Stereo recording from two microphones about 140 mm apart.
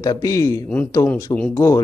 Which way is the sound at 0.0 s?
25° left (ahead or behind).